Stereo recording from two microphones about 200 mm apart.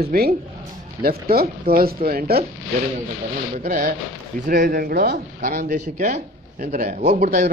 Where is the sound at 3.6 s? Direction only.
45° right (ahead or behind).